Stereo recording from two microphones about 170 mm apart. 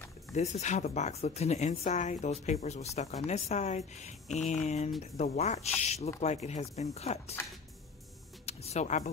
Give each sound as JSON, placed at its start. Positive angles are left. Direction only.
{"t": 0.3, "sound": "speech", "side_deg": 40}
{"t": 8.5, "sound": "speech", "side_deg": 40}